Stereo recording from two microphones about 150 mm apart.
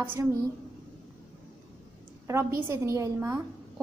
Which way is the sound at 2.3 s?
20° right (ahead or behind).